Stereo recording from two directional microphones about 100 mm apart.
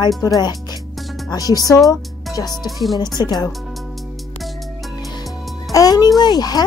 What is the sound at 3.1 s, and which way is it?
Speech, 45° left (ahead or behind).